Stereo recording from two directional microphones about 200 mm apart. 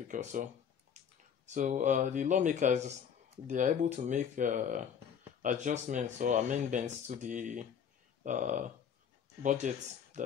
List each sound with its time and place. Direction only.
0.1 s speech: 40° right (ahead or behind)
1.0 s a sound: 35° right (ahead or behind)
1.4 s speech: 35° right (ahead or behind)